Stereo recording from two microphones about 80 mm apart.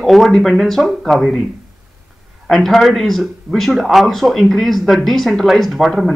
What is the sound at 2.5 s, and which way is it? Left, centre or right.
Speech, centre.